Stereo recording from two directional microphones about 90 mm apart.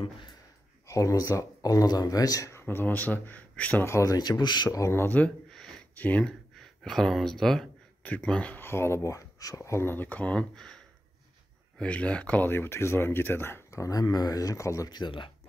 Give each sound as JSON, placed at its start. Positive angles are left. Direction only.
{"t": 0.8, "sound": "speech", "side_deg": 35}
{"t": 2.6, "sound": "speech", "side_deg": 20}
{"t": 3.8, "sound": "speech", "side_deg": 35}
{"t": 4.6, "sound": "speech", "side_deg": 30}
{"t": 5.5, "sound": "a sound", "side_deg": 5}
{"t": 5.9, "sound": "speech", "side_deg": 15}
{"t": 11.8, "sound": "speech", "side_deg": 15}
{"t": 14.9, "sound": "speech", "side_deg": 60}